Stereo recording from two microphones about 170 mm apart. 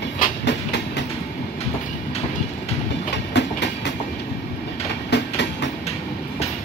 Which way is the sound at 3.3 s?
90° left.